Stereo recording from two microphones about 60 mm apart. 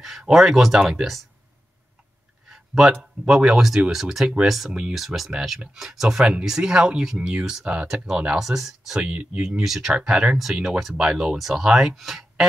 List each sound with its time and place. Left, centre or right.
0.0 s speech: centre
2.5 s a sound: centre
2.9 s speech: centre
9.0 s speech: right
9.7 s speech: centre